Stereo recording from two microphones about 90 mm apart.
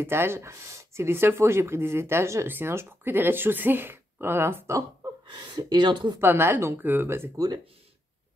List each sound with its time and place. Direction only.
0.0 s speech: 25° right (ahead or behind)
5.3 s speech: 55° right (ahead or behind)
6.2 s speech: 25° right (ahead or behind)
7.3 s speech: 45° right (ahead or behind)